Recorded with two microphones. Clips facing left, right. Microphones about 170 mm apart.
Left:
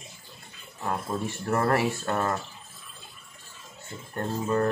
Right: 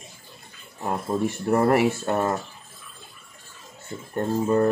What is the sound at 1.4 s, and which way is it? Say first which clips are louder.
Speech: right 5 dB; 20° right (ahead or behind).